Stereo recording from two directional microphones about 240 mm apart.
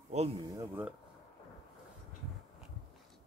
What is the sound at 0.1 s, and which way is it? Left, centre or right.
Speech, right.